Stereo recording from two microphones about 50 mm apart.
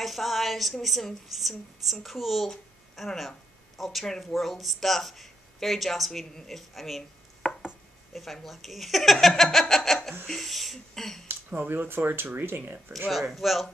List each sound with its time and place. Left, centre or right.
0.0 s a sound: centre
0.8 s speech: centre
7.4 s chopping: centre
8.1 s speech: centre
11.2 s speech: right
13.1 s speech: centre